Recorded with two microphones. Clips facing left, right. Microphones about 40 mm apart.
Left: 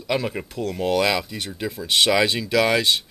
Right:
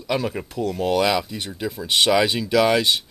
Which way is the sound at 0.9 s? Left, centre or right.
Centre.